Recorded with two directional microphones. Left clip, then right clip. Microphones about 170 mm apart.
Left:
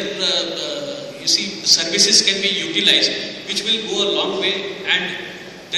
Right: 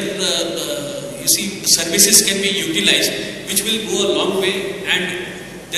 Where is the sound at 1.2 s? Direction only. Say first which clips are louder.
Left 2 dB; 35° left (ahead or behind).